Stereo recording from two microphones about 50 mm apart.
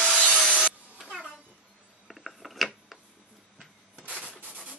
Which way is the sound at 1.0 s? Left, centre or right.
Right.